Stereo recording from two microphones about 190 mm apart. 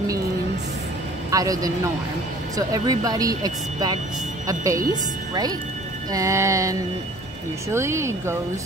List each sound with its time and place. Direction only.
1.3 s speech: 20° right (ahead or behind)